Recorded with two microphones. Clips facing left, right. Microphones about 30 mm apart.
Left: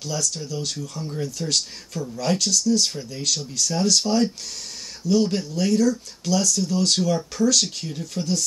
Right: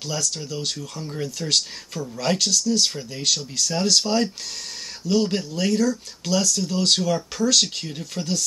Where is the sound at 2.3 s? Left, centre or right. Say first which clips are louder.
Left 1 dB; right.